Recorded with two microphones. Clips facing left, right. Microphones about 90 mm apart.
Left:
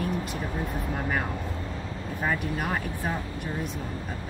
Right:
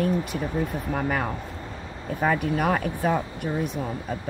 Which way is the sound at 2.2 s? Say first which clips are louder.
Right 6 dB; 90° right.